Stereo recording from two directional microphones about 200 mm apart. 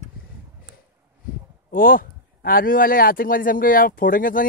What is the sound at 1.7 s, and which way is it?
A man's voice, 45° left (ahead or behind).